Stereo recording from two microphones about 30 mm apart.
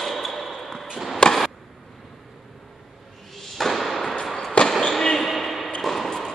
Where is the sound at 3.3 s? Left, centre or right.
Centre.